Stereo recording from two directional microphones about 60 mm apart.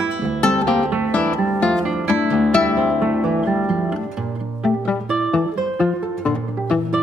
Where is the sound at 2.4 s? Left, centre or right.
Centre.